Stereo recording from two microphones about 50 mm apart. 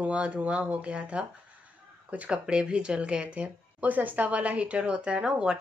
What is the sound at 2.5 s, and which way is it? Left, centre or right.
Speech, centre.